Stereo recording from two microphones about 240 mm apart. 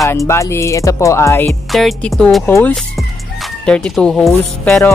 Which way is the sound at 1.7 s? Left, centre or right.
Centre.